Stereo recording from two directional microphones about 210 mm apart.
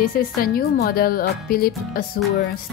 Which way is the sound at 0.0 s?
45° left (ahead or behind).